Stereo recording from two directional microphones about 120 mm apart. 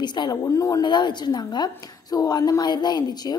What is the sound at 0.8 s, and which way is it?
A woman's voice, 40° left (ahead or behind).